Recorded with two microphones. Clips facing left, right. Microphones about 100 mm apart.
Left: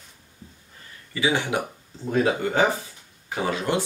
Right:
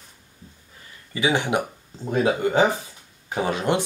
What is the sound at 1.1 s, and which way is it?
Speech, 20° right (ahead or behind).